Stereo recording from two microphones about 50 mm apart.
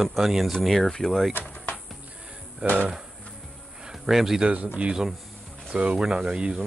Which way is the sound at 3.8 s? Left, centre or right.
Centre.